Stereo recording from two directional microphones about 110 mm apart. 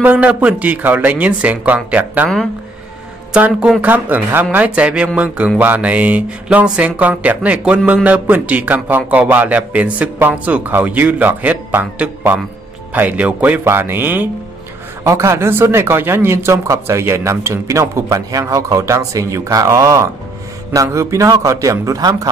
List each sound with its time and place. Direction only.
0.0 s speech: 15° right (ahead or behind)
3.3 s a man's voice: 10° right (ahead or behind); by 22.3 s 30° right (ahead or behind)